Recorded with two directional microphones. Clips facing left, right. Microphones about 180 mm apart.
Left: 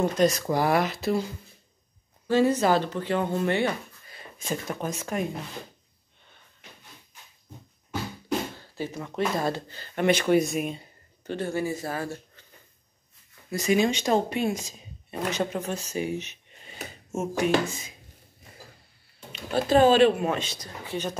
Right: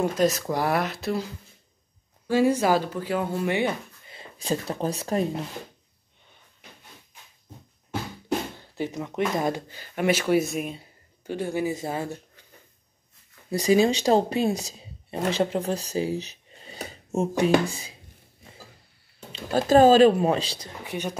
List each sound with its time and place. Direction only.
0.0 s speech: 5° right (ahead or behind)
2.2 s speech: 10° right (ahead or behind)
4.1 s speech: 30° right (ahead or behind)
8.5 s speech: 20° right (ahead or behind)
13.5 s speech: 35° right (ahead or behind)
19.5 s speech: 40° right (ahead or behind); by 21.2 s 15° right (ahead or behind)